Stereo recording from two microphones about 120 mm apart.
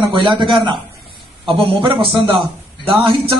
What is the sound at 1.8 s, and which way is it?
A man's voice, 45° right (ahead or behind).